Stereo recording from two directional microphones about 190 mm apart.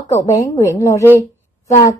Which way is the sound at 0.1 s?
15° left (ahead or behind).